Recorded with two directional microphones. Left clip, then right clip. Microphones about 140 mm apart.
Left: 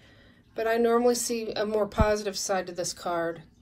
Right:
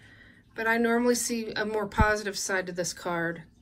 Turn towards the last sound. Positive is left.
turn(degrees=35)  # may be behind; listen again after turning